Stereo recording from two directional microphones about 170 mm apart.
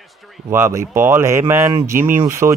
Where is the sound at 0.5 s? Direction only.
15° right (ahead or behind).